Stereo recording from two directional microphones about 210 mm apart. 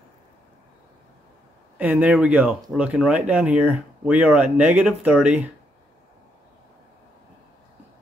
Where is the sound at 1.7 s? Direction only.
5° right (ahead or behind).